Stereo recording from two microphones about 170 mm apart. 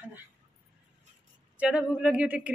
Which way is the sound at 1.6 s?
5° right (ahead or behind).